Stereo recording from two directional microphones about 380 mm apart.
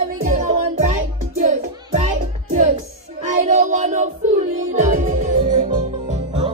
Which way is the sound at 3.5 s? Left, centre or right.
Centre.